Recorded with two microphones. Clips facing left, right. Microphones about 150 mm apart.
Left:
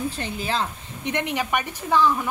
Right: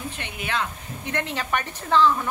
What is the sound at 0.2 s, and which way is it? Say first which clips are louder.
Speech: left 3 dB; 30° left (ahead or behind).